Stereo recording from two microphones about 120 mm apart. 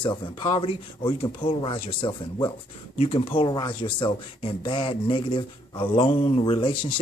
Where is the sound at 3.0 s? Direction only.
50° left (ahead or behind).